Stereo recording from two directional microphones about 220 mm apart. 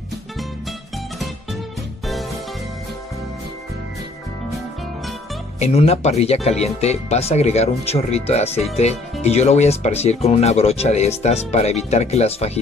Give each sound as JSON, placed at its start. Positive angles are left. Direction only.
{"t": 0.4, "sound": "music", "side_deg": 0}
{"t": 5.6, "sound": "speech", "side_deg": 30}